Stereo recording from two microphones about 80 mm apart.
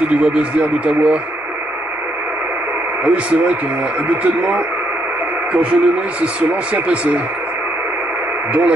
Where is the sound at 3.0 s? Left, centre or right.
Centre.